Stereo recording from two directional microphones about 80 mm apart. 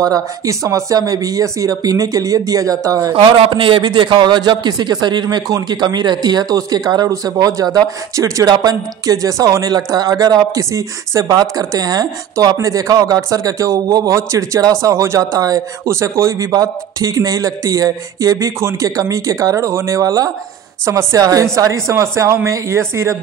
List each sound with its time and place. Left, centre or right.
0.0 s a man's voice: right
3.1 s a man's voice: right